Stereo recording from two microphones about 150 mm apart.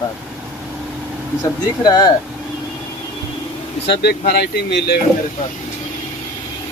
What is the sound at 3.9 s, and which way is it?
Speech, 90° left.